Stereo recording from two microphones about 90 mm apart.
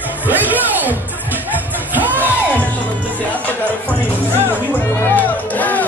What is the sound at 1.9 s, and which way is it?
Music, 20° right (ahead or behind).